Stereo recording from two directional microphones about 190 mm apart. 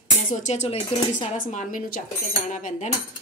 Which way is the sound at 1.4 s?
45° left (ahead or behind).